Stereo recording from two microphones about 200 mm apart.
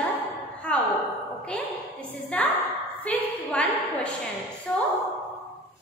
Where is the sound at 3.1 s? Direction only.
5° left (ahead or behind).